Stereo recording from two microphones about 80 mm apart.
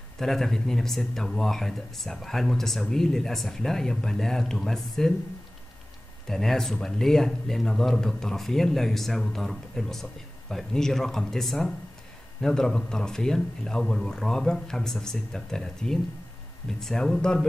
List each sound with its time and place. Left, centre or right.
0.2 s speech: centre
6.2 s speech: centre